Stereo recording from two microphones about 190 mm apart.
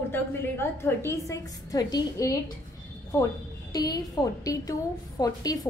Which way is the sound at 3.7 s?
20° left (ahead or behind).